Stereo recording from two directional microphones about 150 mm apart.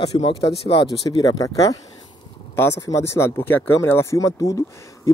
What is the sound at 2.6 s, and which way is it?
Speech, 20° left (ahead or behind).